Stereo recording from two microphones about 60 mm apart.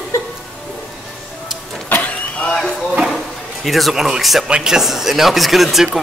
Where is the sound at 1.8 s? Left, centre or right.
Left.